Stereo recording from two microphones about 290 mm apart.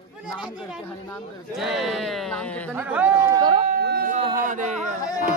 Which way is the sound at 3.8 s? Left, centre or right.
Right.